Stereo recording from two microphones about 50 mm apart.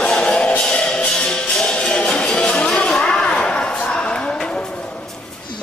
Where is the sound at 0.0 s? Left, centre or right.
Centre.